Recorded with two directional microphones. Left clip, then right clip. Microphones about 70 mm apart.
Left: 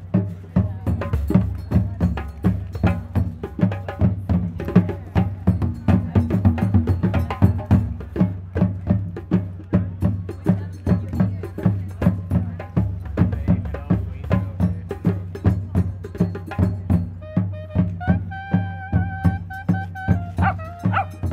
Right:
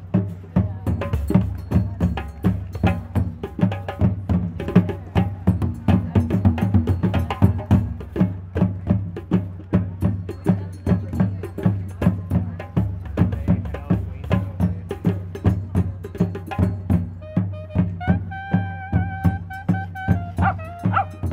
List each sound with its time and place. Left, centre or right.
0.1 s music: centre
0.9 s music: centre
18.0 s music: centre
18.9 s music: centre
20.8 s music: centre